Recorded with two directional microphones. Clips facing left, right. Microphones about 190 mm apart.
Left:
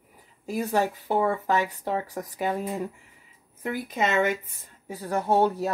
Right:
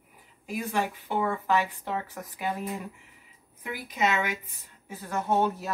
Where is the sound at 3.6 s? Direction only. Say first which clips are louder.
Left 2 dB; 45° left (ahead or behind).